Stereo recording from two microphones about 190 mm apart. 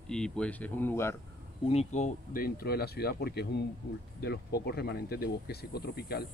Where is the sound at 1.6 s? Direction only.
35° left (ahead or behind).